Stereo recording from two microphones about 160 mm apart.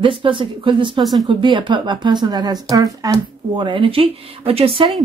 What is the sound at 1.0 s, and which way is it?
Speech, centre (ahead or behind).